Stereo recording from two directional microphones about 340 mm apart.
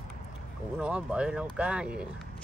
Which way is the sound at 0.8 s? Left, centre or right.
Centre.